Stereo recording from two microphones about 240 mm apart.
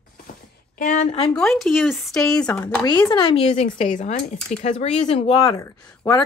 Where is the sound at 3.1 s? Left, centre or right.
Centre.